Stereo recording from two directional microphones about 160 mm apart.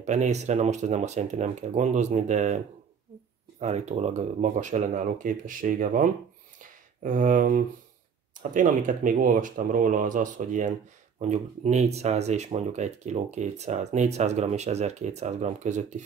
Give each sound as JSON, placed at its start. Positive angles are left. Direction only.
{"t": 0.0, "sound": "speech", "side_deg": -45}
{"t": 3.6, "sound": "speech", "side_deg": -45}
{"t": 6.6, "sound": "a sound", "side_deg": -55}
{"t": 8.4, "sound": "speech", "side_deg": -55}